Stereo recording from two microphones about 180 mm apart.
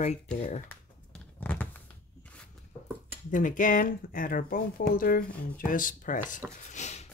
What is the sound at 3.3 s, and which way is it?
Speech, 45° left (ahead or behind).